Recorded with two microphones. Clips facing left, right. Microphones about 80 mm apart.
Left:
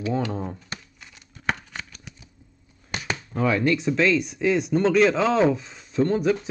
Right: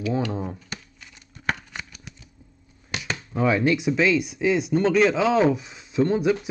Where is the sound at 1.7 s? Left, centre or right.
Centre.